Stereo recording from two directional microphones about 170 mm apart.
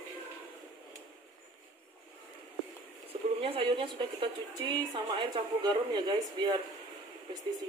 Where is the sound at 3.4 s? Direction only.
35° right (ahead or behind).